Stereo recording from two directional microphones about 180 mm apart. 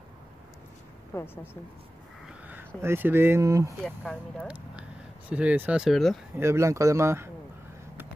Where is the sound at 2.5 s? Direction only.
10° right (ahead or behind).